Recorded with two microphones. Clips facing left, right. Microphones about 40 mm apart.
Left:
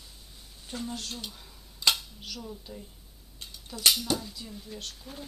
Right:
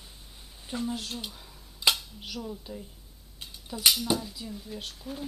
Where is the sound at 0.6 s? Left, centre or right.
Centre.